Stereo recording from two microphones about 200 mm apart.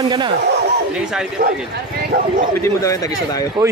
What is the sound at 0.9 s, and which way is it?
Speech, 5° right (ahead or behind).